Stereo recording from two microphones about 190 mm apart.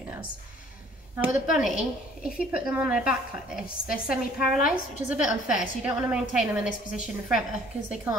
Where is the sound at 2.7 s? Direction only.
5° right (ahead or behind).